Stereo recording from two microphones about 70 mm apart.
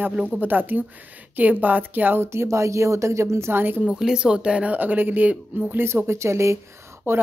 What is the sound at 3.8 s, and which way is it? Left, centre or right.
Speech, centre.